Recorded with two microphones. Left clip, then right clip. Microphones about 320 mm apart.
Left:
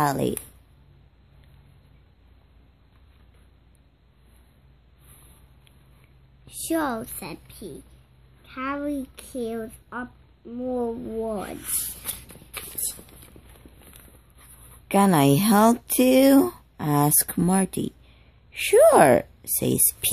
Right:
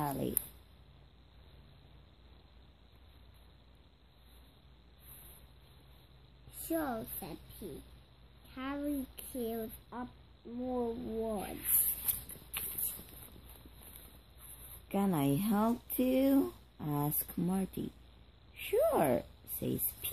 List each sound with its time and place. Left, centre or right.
0.0 s speech: left
6.7 s speech: left
8.5 s speech: centre
14.9 s speech: left